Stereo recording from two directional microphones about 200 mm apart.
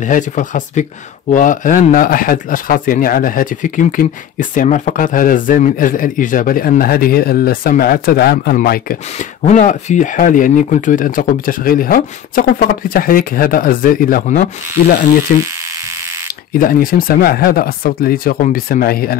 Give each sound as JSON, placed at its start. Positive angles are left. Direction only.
{"t": 0.0, "sound": "speech", "side_deg": 40}
{"t": 9.4, "sound": "speech", "side_deg": 40}
{"t": 16.5, "sound": "speech", "side_deg": 45}